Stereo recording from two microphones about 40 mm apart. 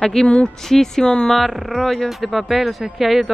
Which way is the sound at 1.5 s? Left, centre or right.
Centre.